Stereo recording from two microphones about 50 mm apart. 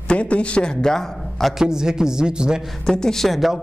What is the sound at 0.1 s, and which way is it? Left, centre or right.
A man's voice, left.